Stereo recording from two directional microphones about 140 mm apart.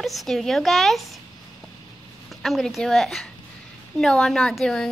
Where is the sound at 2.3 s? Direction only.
Centre (ahead or behind).